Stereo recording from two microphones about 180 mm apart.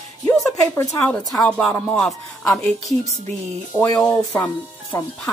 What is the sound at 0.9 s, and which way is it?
Speech, 10° left (ahead or behind).